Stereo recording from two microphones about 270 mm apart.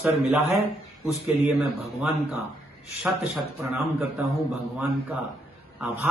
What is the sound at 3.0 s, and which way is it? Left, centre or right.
A man's voice, centre.